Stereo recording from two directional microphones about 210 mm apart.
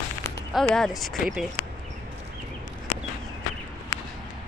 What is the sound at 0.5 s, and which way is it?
Speech, 5° left (ahead or behind).